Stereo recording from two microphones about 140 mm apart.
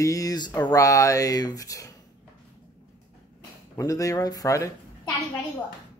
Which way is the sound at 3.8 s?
25° left (ahead or behind).